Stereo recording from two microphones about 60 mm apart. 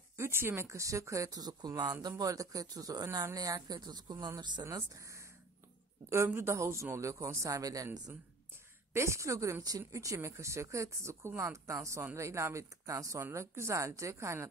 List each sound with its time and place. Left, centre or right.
0.2 s speech: right
4.3 s speech: right
6.0 s speech: right
8.9 s speech: right
13.2 s speech: right